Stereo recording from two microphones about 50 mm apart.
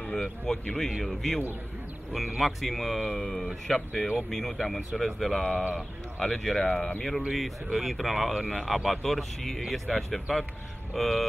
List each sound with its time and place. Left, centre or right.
0.1 s speech: centre
7.3 s speech: centre